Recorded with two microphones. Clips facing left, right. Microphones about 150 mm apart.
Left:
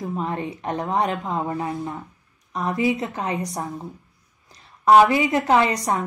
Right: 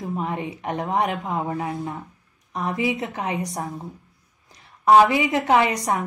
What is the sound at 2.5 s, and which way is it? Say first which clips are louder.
A woman's voice: left 2 dB; 15° right (ahead or behind).